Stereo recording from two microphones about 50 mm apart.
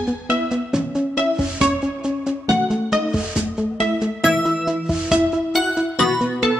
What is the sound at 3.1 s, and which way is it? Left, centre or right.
Music, centre.